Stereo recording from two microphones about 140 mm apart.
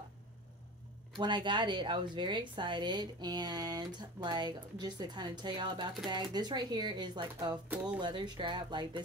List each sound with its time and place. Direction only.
1.1 s a woman's voice: 35° right (ahead or behind)